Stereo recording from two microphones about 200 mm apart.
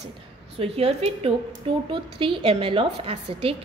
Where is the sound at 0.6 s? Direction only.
30° right (ahead or behind).